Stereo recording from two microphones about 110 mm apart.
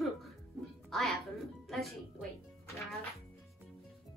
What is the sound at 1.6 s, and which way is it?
Music, centre (ahead or behind).